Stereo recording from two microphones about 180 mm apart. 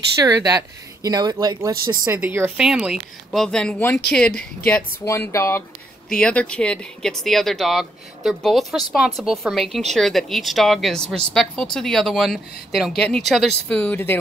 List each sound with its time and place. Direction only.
0.2 s speech: 20° right (ahead or behind); by 14.1 s 10° left (ahead or behind)